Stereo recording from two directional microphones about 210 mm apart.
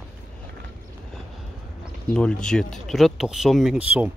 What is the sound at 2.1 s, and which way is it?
Speech, 5° left (ahead or behind).